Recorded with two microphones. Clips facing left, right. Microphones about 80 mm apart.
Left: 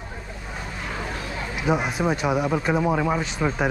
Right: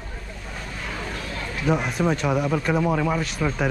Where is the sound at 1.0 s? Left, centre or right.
Centre.